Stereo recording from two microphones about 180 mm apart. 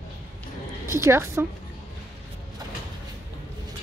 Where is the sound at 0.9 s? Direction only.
15° right (ahead or behind).